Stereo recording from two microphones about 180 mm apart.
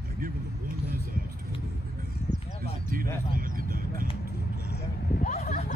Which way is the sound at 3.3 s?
50° right (ahead or behind).